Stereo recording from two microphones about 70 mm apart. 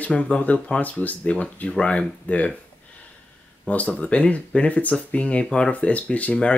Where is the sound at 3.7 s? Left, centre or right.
Centre.